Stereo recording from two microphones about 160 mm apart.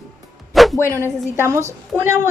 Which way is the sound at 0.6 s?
Centre (ahead or behind).